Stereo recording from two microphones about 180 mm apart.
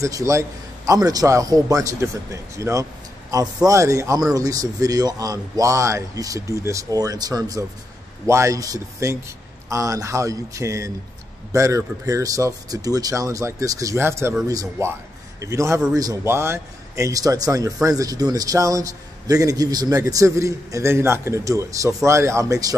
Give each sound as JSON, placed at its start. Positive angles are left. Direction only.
{"t": 0.0, "sound": "a man's voice", "side_deg": -15}